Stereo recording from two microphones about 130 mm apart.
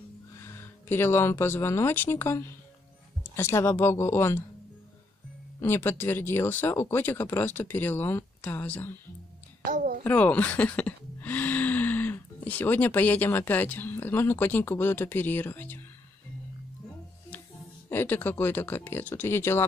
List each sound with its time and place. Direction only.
0.4 s speech: 20° left (ahead or behind)
5.6 s speech: 15° left (ahead or behind)
9.7 s a sound: 90° right
10.0 s speech: 10° left (ahead or behind)
17.8 s speech: 15° left (ahead or behind)